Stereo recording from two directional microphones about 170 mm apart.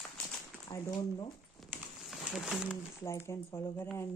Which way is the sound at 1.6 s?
Centre (ahead or behind).